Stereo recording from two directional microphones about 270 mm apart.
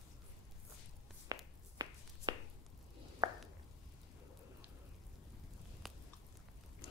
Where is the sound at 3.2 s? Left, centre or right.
Centre.